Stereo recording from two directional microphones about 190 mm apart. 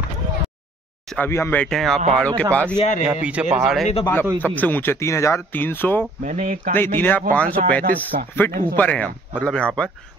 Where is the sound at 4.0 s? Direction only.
10° left (ahead or behind).